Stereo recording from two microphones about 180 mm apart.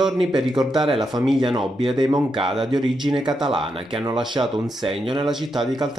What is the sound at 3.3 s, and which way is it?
Speech, centre (ahead or behind).